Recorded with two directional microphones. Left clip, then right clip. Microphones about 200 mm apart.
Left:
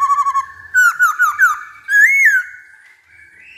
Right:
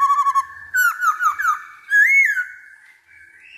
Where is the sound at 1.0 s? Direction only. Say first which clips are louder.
Left 6 dB; 10° left (ahead or behind).